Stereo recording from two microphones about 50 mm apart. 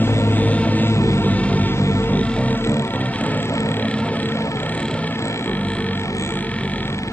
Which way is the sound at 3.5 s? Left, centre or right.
Left.